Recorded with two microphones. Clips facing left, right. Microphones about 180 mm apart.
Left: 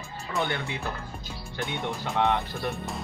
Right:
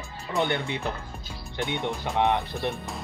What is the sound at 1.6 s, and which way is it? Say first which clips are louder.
Speech: right 3 dB; 20° right (ahead or behind).